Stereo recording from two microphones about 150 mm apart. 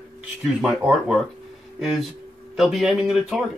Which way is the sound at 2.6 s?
Centre (ahead or behind).